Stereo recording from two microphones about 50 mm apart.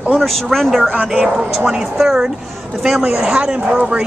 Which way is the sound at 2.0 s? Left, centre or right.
Centre.